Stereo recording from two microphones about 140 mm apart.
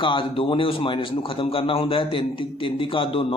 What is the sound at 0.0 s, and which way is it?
A man's voice, 35° left (ahead or behind).